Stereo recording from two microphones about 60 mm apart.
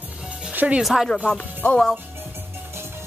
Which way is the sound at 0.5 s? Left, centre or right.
Right.